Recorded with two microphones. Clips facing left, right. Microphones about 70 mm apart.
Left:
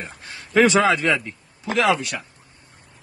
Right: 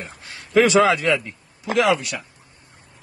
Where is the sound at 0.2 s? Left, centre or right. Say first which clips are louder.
Even; left.